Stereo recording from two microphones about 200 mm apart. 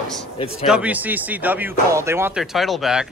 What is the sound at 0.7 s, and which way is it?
Speech, 5° right (ahead or behind).